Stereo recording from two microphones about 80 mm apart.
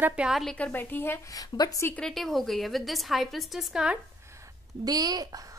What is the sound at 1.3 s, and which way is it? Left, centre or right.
Speech, left.